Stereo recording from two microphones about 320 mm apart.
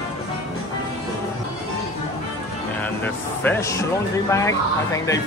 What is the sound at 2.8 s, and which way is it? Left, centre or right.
Speech, centre.